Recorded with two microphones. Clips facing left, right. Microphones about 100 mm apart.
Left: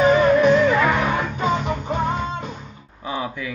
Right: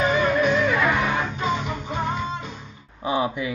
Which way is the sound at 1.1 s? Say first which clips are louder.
Left 3 dB; 50° left (ahead or behind).